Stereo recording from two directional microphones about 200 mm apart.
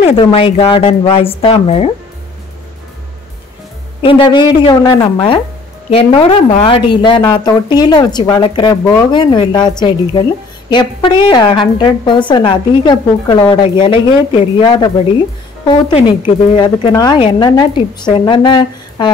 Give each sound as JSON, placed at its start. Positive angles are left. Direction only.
{"t": 0.0, "sound": "a woman's voice", "side_deg": 30}
{"t": 4.0, "sound": "a woman's voice", "side_deg": 25}